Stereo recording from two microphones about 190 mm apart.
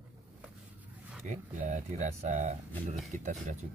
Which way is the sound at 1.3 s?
45° right (ahead or behind).